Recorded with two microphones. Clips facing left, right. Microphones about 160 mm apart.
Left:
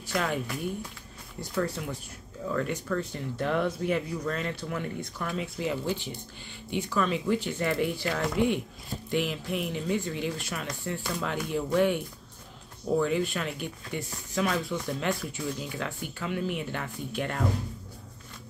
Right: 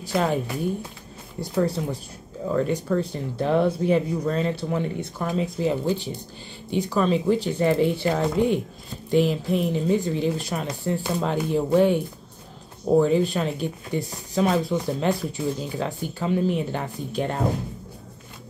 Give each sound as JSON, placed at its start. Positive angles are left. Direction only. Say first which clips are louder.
{"t": 0.0, "sound": "speech", "louder": "right 6 dB", "side_deg": -30}